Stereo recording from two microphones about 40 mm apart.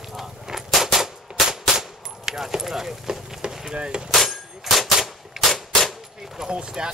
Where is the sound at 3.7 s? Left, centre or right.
Right.